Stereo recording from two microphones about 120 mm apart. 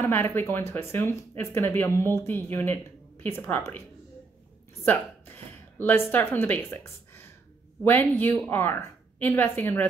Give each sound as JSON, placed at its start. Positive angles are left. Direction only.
{"t": 0.0, "sound": "speech", "side_deg": 15}
{"t": 5.8, "sound": "speech", "side_deg": 15}